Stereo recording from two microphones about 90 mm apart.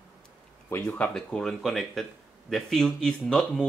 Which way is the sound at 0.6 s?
15° left (ahead or behind).